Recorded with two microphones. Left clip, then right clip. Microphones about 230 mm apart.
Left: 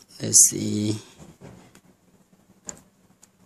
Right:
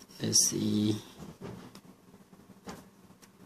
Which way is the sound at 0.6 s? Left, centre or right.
Left.